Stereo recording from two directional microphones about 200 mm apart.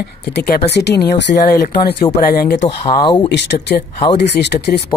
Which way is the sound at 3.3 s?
60° left (ahead or behind).